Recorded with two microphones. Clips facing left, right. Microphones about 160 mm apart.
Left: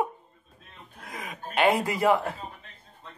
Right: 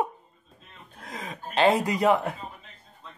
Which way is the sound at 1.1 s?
25° right (ahead or behind).